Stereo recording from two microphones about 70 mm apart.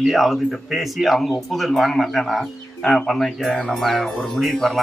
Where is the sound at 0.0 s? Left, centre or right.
Centre.